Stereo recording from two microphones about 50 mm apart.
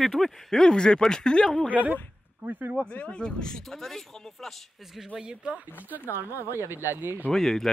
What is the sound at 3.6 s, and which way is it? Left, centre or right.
Speech, centre.